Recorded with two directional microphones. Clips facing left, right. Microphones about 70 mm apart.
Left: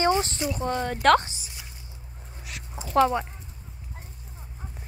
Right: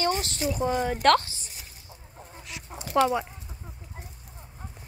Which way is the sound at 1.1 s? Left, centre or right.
Left.